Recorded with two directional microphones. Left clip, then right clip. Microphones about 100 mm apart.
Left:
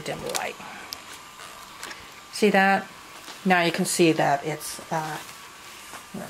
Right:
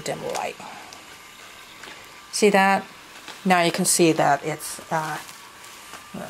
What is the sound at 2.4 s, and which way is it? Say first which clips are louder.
Speech: right 2 dB; 35° right (ahead or behind).